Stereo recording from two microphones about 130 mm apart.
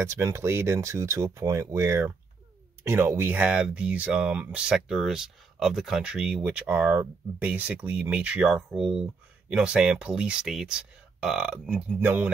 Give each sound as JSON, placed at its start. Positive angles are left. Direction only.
{"t": 0.0, "sound": "speech", "side_deg": -20}